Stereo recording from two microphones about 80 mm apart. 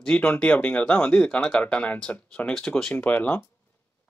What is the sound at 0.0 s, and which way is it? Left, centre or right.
Speech, centre.